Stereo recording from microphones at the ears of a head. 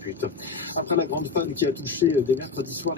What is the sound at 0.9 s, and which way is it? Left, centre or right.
Speech, left.